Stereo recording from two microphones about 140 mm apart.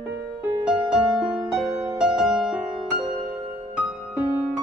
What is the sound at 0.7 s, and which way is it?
Music, 5° right (ahead or behind).